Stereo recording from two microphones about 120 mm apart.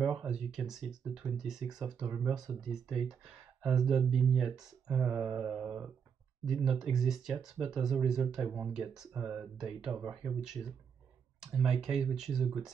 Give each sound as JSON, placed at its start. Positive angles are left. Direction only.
{"t": 0.2, "sound": "speech", "side_deg": -5}